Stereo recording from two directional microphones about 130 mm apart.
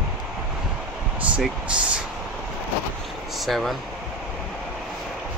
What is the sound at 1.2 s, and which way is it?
Speech, 10° right (ahead or behind).